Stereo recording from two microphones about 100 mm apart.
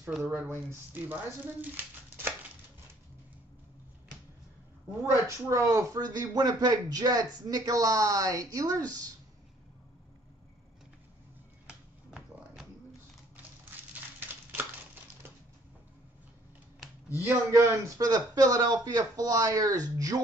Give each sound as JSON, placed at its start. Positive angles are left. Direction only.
{"t": 0.2, "sound": "speech", "side_deg": -20}
{"t": 5.0, "sound": "speech", "side_deg": -30}
{"t": 14.2, "sound": "a sound", "side_deg": -20}
{"t": 17.2, "sound": "speech", "side_deg": -25}